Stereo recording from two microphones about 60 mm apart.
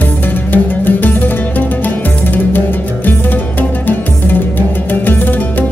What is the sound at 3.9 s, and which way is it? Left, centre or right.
Music, left.